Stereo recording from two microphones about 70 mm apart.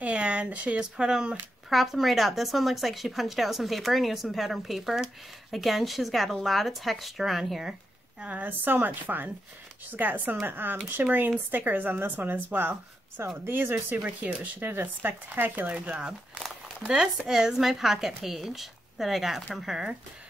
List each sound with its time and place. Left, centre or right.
0.0 s speech: centre
1.7 s speech: centre
8.2 s speech: right
15.7 s speech: centre